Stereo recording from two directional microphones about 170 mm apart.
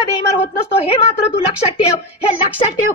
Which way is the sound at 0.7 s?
35° left (ahead or behind).